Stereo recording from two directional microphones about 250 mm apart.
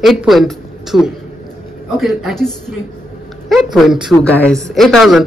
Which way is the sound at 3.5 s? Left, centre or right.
Centre.